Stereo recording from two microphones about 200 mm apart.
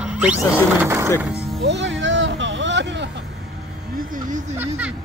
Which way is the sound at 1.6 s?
65° right (ahead or behind).